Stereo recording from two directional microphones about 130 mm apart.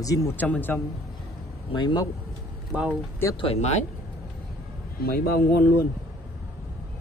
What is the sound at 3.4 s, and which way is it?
Speech, 55° left (ahead or behind).